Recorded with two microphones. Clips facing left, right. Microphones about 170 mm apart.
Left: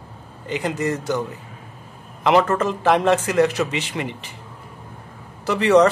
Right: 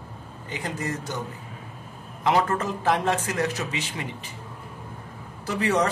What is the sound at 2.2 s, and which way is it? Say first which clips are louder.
A man's voice: left 6 dB; 80° left.